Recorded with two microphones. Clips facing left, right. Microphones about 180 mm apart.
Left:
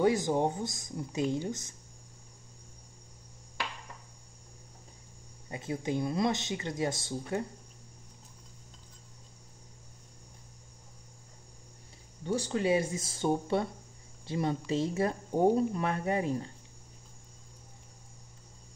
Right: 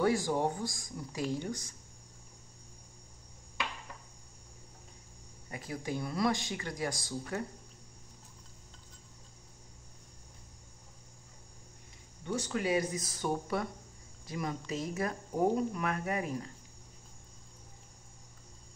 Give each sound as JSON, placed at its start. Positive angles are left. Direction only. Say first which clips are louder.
{"t": 0.0, "sound": "speech", "louder": "left 3 dB", "side_deg": 20}
{"t": 5.5, "sound": "speech", "louder": "left 4 dB", "side_deg": 25}
{"t": 12.3, "sound": "speech", "louder": "left 4 dB", "side_deg": 30}